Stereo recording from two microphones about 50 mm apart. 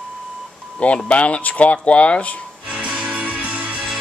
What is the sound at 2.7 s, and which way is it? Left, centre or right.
Music, right.